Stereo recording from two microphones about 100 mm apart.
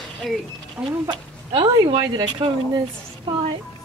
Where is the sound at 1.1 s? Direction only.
45° right (ahead or behind).